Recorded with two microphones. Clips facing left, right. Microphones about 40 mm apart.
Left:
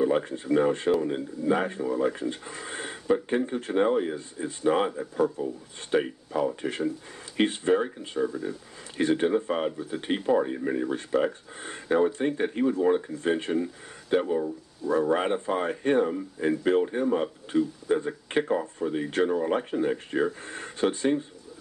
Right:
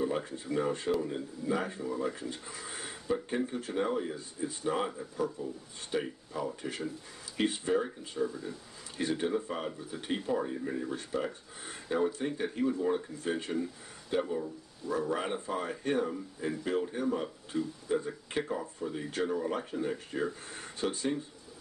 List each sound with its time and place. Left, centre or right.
0.0 s speech: left